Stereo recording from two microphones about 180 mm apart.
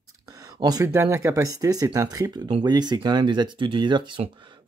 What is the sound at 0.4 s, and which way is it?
Speech, 20° right (ahead or behind).